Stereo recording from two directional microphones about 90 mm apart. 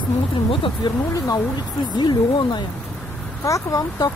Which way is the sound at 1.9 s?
55° left (ahead or behind).